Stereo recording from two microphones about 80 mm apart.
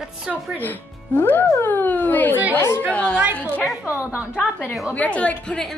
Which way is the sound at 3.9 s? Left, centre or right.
Centre.